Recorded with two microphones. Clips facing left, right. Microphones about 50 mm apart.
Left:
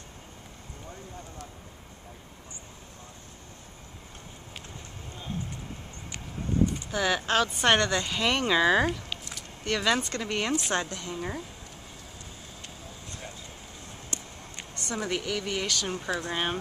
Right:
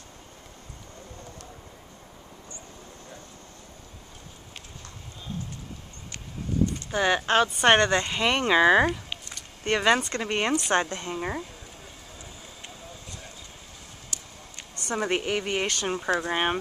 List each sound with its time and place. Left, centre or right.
6.9 s speech: right
9.7 s speech: right
14.1 s a sound: left
14.9 s a woman's voice: right